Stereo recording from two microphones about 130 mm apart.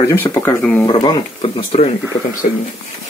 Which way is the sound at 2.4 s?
70° left (ahead or behind).